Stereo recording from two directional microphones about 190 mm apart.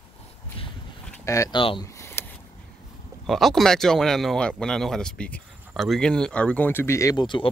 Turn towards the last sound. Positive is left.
turn(degrees=25)  # may be behind; listen again after turning